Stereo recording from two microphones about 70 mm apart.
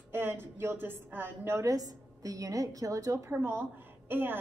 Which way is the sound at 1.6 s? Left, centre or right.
Right.